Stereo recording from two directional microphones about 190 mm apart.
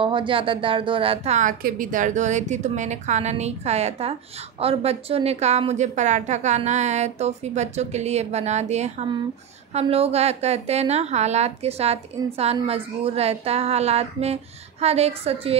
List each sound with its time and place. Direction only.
0.0 s a woman's voice: 25° right (ahead or behind)